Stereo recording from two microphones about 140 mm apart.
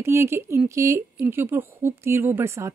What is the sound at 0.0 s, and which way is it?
Speech, 20° right (ahead or behind).